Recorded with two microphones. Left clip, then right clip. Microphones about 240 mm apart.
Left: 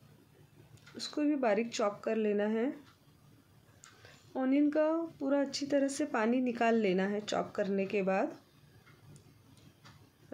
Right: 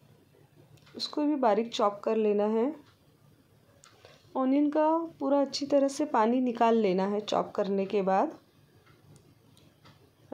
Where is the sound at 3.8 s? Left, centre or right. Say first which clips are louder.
Right 1 dB; centre.